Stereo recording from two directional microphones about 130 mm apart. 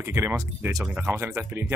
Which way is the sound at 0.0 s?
20° right (ahead or behind).